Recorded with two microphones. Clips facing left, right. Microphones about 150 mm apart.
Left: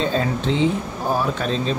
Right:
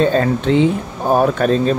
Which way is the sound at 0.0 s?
55° right (ahead or behind).